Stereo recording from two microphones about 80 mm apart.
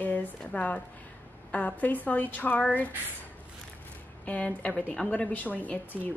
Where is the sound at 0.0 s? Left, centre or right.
Centre.